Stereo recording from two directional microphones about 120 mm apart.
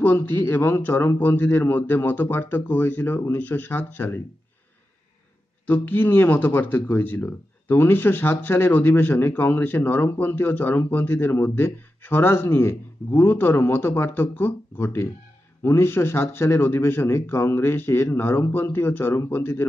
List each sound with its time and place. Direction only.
0.0 s speech: 15° left (ahead or behind)
5.7 s speech: 15° left (ahead or behind)